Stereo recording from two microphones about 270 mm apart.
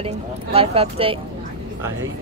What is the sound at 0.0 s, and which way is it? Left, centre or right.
Speech, right.